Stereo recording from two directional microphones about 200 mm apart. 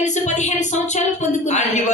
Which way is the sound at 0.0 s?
35° left (ahead or behind).